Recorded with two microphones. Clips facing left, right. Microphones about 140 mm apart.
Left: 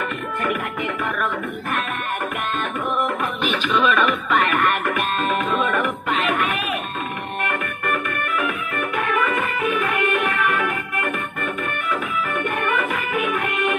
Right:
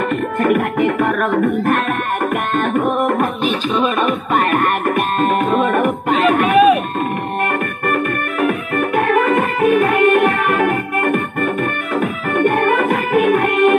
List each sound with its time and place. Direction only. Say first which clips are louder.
0.4 s music: right 10 dB; 45° right (ahead or behind)
3.4 s music: left 1 dB; 35° right (ahead or behind)
4.3 s music: right 4 dB; 45° right (ahead or behind)
7.8 s music: right 6 dB; 45° right (ahead or behind)